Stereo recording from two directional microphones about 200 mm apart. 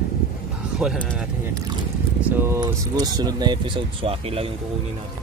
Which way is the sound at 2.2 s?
10° right (ahead or behind).